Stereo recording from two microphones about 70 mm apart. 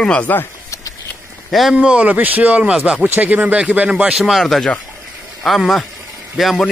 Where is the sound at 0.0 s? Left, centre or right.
Centre.